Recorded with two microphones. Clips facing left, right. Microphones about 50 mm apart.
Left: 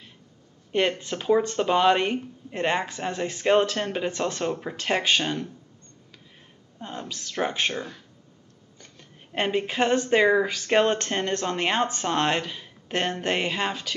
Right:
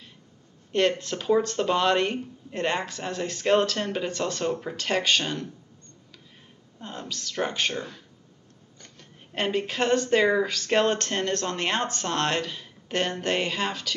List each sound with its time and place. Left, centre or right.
0.7 s a woman's voice: centre
6.8 s a woman's voice: centre